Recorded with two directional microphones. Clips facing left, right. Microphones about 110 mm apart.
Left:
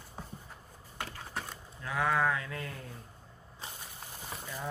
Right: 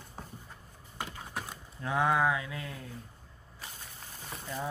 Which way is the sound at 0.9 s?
15° right (ahead or behind).